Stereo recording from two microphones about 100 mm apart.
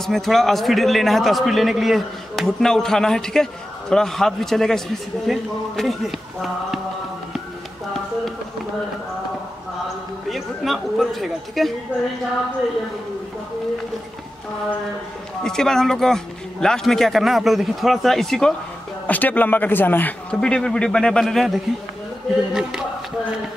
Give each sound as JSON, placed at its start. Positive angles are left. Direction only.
{"t": 0.0, "sound": "a man's voice", "side_deg": 0}
{"t": 10.3, "sound": "a man's voice", "side_deg": 0}
{"t": 15.4, "sound": "a man's voice", "side_deg": 5}
{"t": 19.0, "sound": "a man's voice", "side_deg": 15}